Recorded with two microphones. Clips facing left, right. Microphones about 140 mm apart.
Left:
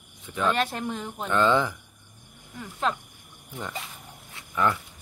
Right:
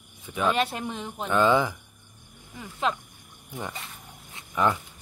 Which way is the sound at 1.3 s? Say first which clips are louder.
Right 1 dB; 10° right (ahead or behind).